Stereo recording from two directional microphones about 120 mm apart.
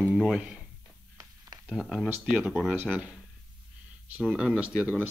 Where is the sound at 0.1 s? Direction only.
5° right (ahead or behind).